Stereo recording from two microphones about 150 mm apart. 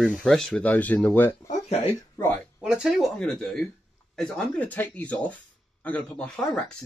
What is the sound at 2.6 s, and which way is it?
Speech, 5° right (ahead or behind).